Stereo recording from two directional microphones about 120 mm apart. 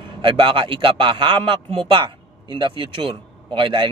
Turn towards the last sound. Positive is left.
turn(degrees=-45)  # may be behind; listen again after turning